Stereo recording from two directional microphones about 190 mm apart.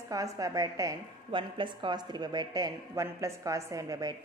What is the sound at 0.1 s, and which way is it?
A woman's voice, 15° right (ahead or behind).